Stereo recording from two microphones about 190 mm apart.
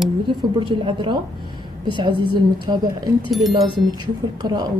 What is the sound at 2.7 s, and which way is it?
Speech, 20° right (ahead or behind).